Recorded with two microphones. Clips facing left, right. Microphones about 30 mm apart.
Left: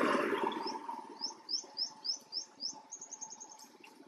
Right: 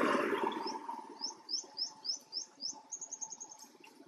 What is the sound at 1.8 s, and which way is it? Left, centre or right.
Bird, left.